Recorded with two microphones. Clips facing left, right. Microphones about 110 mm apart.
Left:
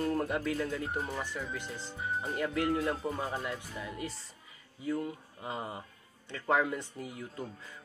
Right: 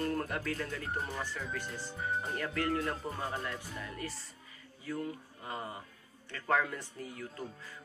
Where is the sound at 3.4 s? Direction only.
15° left (ahead or behind).